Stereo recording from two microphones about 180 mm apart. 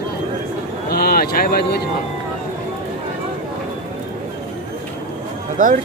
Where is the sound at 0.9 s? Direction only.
60° left (ahead or behind).